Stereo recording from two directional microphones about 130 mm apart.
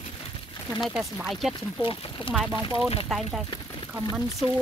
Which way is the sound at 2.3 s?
45° left (ahead or behind).